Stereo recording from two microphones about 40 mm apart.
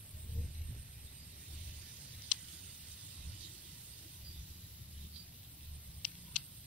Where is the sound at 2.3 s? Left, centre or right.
Left.